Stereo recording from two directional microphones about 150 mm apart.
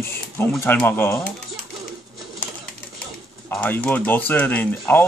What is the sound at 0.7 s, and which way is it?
Speech, 15° left (ahead or behind).